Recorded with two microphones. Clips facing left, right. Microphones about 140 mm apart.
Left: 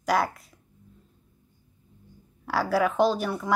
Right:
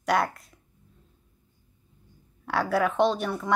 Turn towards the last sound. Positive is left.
turn(degrees=0)  # may be behind; listen again after turning